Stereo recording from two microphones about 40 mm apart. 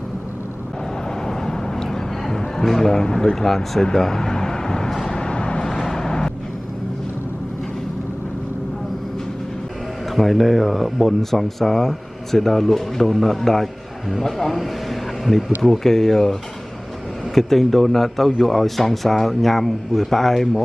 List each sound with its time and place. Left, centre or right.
1.2 s vehicle: centre
2.6 s speech: centre
5.1 s vehicle: left
5.7 s vehicle: centre
10.1 s speech: centre
14.6 s vehicle: centre
15.6 s speech: centre